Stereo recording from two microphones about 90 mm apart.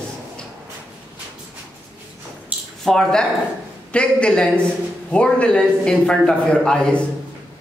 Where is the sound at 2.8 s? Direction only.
5° left (ahead or behind).